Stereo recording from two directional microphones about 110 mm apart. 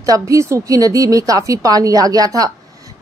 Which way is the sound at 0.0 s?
30° right (ahead or behind).